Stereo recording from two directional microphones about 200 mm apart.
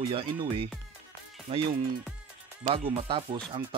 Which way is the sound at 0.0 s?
25° right (ahead or behind).